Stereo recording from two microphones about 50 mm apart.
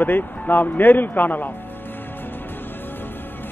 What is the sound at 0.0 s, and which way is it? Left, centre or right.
A man's voice, left.